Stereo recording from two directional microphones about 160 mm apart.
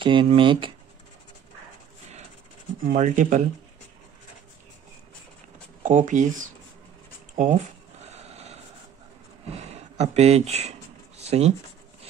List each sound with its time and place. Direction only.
0.0 s speech: 30° right (ahead or behind)
2.8 s speech: 55° right (ahead or behind)
5.8 s speech: 50° right (ahead or behind)
8.0 s a sound: 40° right (ahead or behind)
9.5 s speech: 40° right (ahead or behind)